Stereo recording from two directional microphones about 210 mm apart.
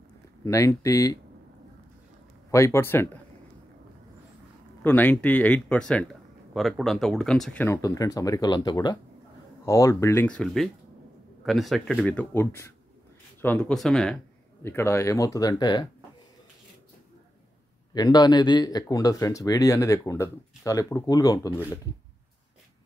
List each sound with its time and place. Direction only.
0.4 s speech: 15° left (ahead or behind)
2.5 s speech: 15° left (ahead or behind)
4.8 s speech: 10° left (ahead or behind)
17.9 s speech: 20° left (ahead or behind)